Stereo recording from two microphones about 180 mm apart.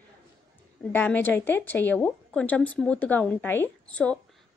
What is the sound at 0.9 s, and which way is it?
A woman's voice, 10° left (ahead or behind).